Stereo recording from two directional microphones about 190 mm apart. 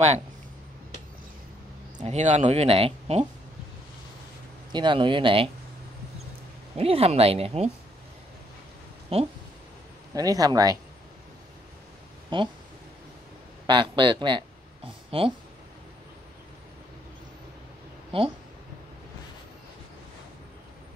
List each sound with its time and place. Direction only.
2.0 s speech: 35° right (ahead or behind)
4.7 s speech: 25° right (ahead or behind)
6.8 s speech: 30° right (ahead or behind)
9.1 s speech: 30° right (ahead or behind)
10.1 s speech: 20° right (ahead or behind)
12.3 s speech: 25° right (ahead or behind)
13.7 s speech: 25° right (ahead or behind)